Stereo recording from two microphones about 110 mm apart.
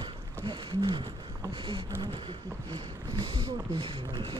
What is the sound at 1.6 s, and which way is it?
Speech, 50° right (ahead or behind).